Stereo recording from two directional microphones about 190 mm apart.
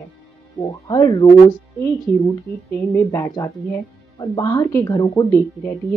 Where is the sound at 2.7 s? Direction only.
15° left (ahead or behind).